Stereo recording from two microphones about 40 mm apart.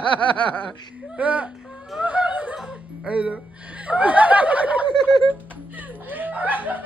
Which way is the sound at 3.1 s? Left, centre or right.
Right.